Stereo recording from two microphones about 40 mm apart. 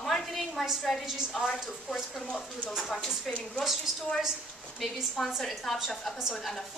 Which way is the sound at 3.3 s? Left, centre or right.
Centre.